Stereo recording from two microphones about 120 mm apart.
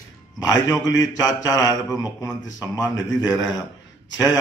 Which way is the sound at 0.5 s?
30° left (ahead or behind).